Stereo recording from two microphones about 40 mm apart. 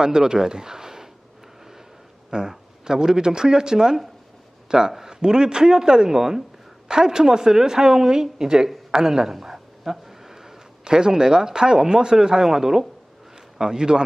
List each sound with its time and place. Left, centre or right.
0.0 s speech: centre
2.3 s a woman's voice: centre